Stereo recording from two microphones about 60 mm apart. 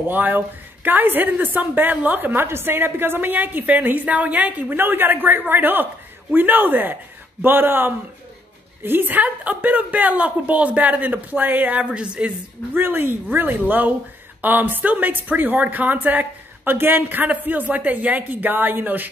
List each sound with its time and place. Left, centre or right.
0.1 s a woman's voice: right
12.7 s a woman's voice: right